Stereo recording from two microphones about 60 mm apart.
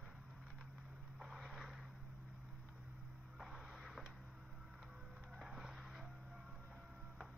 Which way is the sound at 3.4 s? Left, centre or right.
Centre.